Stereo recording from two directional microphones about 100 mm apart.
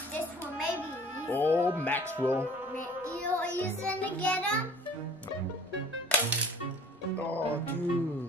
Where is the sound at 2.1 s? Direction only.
20° right (ahead or behind).